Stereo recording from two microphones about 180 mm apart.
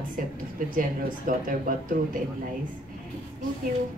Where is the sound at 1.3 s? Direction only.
50° right (ahead or behind).